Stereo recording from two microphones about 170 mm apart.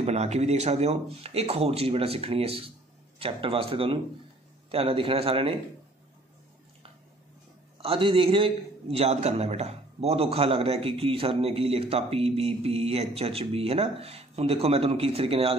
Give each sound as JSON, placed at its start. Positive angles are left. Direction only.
{"t": 0.0, "sound": "a man's voice", "side_deg": -40}
{"t": 7.8, "sound": "a man's voice", "side_deg": -35}